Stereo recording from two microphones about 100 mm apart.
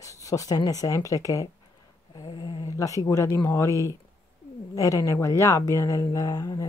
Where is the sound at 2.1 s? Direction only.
50° left (ahead or behind).